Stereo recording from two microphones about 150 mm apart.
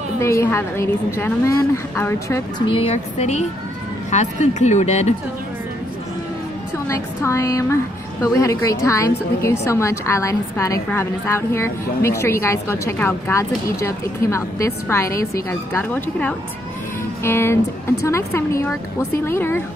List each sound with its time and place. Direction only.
0.2 s a woman's voice: 15° left (ahead or behind)
2.6 s speech: 40° left (ahead or behind)
7.2 s a woman's voice: 20° left (ahead or behind)